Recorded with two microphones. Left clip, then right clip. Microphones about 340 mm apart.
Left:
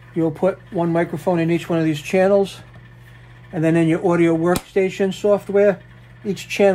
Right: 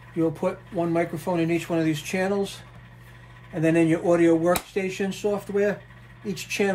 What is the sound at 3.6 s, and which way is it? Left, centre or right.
Speech, left.